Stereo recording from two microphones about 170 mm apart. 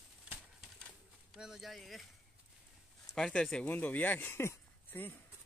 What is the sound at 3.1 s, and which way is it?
Speech, 5° left (ahead or behind).